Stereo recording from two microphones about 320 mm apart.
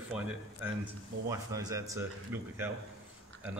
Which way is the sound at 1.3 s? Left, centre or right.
Centre.